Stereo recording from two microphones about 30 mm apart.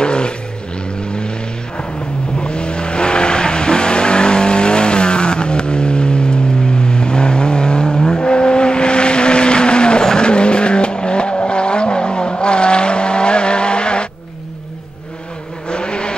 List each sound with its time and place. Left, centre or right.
0.0 s vehicle: left
2.3 s vehicle: left
15.7 s vehicle: left